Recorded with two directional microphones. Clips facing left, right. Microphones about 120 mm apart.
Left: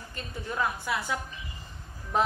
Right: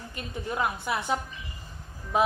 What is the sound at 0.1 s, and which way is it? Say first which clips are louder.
A woman's voice: right 2 dB; 20° right (ahead or behind).